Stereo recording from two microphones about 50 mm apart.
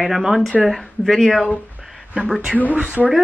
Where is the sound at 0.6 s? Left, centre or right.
Centre.